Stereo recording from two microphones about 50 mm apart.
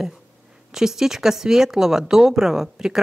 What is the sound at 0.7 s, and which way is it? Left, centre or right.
Speech, centre.